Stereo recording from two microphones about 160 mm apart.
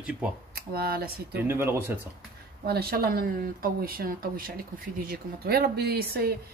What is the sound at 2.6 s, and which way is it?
A woman's voice, 75° right (ahead or behind).